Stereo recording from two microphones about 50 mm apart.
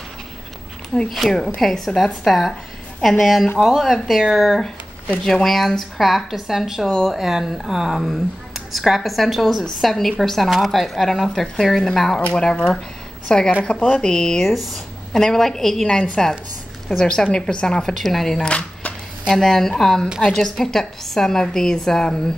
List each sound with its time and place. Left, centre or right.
1.2 s a woman's voice: centre
1.6 s speech: centre
5.2 s a woman's voice: centre
17.9 s speech: centre
18.4 s a sound: left
19.3 s a woman's voice: centre